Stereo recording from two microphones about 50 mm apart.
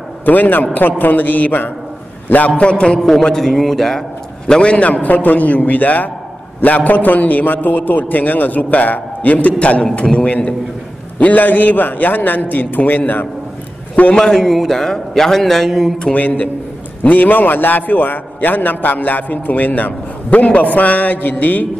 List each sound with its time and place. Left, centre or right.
0.2 s a man's voice: left
2.5 s a man's voice: left
3.0 s speech: centre
4.5 s a man's voice: left
14.1 s speech: centre
16.0 s a man's voice: left